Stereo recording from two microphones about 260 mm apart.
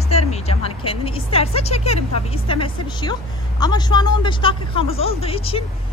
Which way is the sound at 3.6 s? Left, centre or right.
Centre.